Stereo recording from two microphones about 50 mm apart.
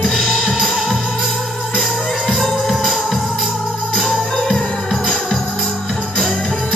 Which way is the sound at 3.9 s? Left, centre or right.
Centre.